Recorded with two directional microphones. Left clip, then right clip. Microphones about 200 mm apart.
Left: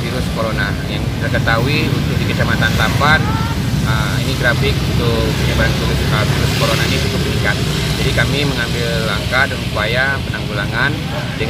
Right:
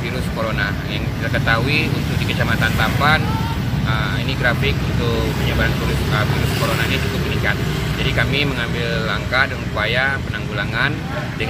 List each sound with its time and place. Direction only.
1.5 s speech: centre (ahead or behind)
9.3 s speech: centre (ahead or behind)